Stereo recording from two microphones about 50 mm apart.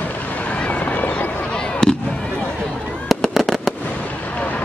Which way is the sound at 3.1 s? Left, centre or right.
Centre.